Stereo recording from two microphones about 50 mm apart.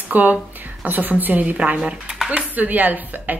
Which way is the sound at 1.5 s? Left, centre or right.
Right.